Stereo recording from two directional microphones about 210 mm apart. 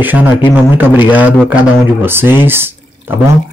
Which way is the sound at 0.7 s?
10° right (ahead or behind).